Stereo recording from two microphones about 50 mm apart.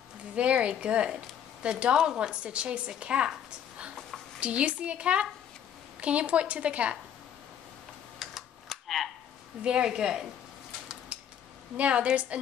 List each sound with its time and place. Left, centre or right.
0.4 s a woman's voice: right
4.4 s a woman's voice: right
8.2 s computer keyboard: centre
9.6 s a woman's voice: centre
11.1 s cutlery: right
11.7 s a woman's voice: right